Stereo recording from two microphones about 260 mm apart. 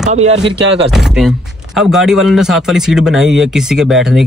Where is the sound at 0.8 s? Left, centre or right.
Centre.